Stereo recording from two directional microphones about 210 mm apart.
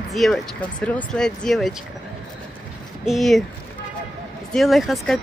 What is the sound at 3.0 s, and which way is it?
Speech, centre (ahead or behind).